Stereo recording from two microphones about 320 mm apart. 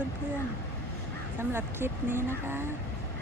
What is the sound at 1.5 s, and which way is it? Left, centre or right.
Speech, centre.